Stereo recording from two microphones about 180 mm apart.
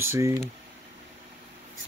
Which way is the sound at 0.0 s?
15° right (ahead or behind).